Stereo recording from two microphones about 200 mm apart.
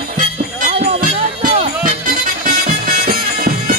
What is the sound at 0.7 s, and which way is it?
Music, 35° right (ahead or behind).